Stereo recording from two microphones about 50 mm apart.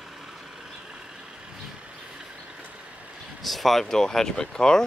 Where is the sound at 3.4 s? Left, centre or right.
Centre.